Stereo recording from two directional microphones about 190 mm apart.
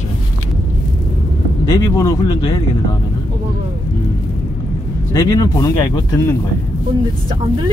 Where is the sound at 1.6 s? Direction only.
15° left (ahead or behind).